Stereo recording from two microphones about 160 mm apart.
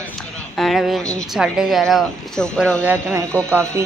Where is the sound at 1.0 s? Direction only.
20° right (ahead or behind).